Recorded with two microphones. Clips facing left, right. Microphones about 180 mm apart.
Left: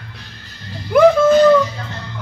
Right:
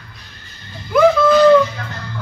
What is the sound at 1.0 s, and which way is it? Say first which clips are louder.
Dog: left 2 dB; 45° left (ahead or behind).